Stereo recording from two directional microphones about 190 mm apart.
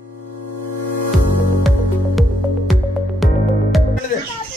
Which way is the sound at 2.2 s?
Centre (ahead or behind).